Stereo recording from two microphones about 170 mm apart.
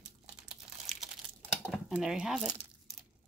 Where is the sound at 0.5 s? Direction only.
Centre (ahead or behind).